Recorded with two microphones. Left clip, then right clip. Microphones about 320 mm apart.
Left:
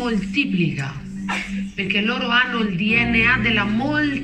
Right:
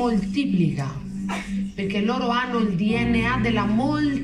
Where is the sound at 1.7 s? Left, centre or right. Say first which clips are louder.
Left 4 dB; centre.